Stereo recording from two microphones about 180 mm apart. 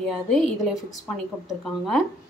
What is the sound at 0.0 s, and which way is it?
A woman's voice, centre (ahead or behind).